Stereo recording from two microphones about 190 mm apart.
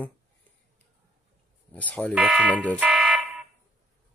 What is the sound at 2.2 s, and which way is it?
Speech, 5° right (ahead or behind).